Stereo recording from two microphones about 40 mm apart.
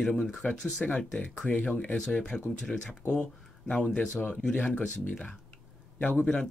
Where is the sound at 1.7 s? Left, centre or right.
Left.